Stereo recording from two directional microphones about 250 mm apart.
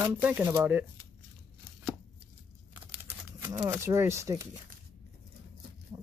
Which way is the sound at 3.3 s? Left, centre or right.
Centre.